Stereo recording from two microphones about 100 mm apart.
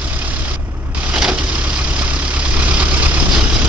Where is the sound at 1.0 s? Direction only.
10° right (ahead or behind).